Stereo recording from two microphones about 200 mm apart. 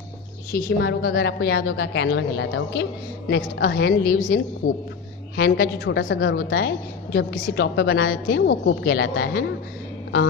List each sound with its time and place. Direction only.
0.5 s a woman's voice: 50° left (ahead or behind)
5.3 s a woman's voice: 55° left (ahead or behind)